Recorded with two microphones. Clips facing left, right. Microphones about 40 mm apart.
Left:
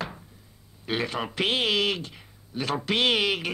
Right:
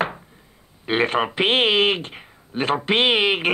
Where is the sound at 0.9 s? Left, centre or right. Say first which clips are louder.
Right 9 dB; right.